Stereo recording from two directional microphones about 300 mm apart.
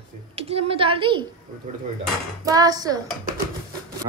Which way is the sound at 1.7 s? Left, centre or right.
Right.